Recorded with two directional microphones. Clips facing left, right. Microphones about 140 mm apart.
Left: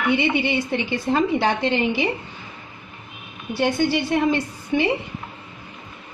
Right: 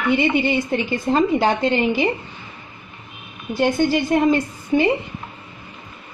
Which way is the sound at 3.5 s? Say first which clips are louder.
Right 3 dB; 45° right (ahead or behind).